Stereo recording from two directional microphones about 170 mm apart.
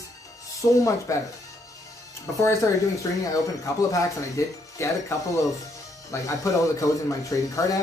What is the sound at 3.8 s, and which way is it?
Speech, 15° left (ahead or behind).